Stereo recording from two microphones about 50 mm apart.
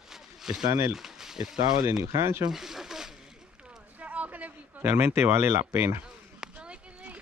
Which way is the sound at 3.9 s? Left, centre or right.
Right.